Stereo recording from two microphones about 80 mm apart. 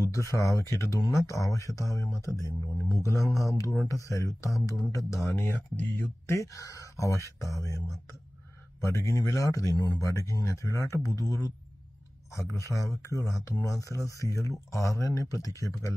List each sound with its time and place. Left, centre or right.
0.0 s speech: left
6.3 s speech: left
8.8 s speech: left
9.8 s speech: left
10.0 s speech: left